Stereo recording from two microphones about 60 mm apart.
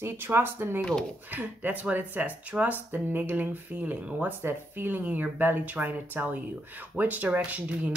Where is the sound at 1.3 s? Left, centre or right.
Right.